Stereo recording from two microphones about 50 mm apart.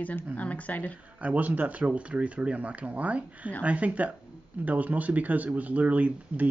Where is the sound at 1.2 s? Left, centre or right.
Right.